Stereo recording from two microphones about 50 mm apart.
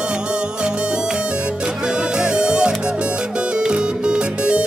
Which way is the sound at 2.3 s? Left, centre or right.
Centre.